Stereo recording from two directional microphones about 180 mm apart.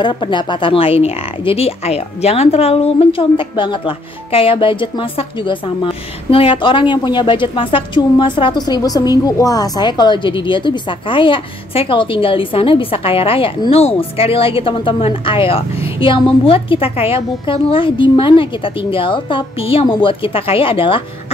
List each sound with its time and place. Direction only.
0.0 s speech: 25° left (ahead or behind)